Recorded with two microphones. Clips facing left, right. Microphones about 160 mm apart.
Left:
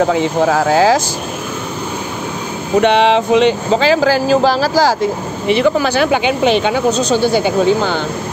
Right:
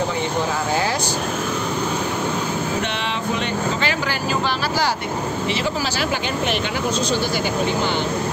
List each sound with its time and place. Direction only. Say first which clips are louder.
0.0 s speech: left 9 dB; 90° left
2.8 s speech: left 13 dB; 85° left